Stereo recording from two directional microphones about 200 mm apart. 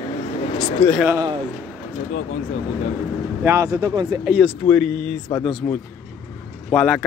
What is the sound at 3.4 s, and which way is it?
Speech, 15° right (ahead or behind).